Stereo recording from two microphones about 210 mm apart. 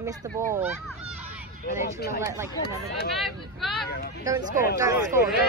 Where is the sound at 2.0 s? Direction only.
50° left (ahead or behind).